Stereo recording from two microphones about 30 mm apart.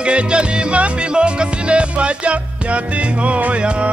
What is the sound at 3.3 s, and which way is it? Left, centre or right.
Music, right.